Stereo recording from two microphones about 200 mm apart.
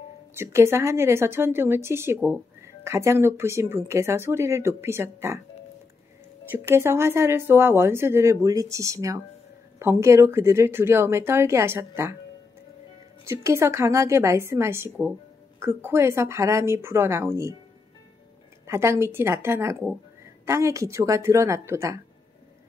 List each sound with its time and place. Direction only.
0.3 s a woman's voice: 10° right (ahead or behind)
6.5 s a woman's voice: 10° right (ahead or behind)
13.2 s a woman's voice: 15° right (ahead or behind)
18.7 s a woman's voice: 15° right (ahead or behind)